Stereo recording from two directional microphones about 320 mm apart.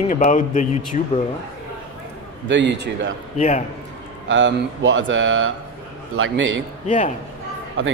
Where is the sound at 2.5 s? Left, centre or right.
Right.